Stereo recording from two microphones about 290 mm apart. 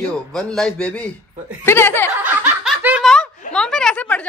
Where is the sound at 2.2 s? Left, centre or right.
Centre.